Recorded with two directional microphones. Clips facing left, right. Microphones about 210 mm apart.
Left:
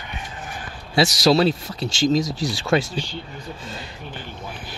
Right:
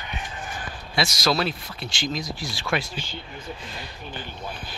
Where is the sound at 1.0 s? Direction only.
30° left (ahead or behind).